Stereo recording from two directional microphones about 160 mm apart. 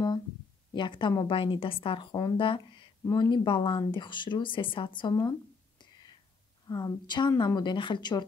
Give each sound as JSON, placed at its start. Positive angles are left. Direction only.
{"t": 0.7, "sound": "a woman's voice", "side_deg": 30}
{"t": 6.7, "sound": "speech", "side_deg": 25}